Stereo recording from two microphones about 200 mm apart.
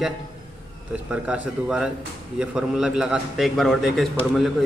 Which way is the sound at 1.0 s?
5° right (ahead or behind).